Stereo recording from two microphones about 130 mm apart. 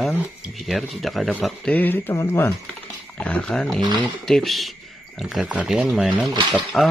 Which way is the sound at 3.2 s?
10° left (ahead or behind).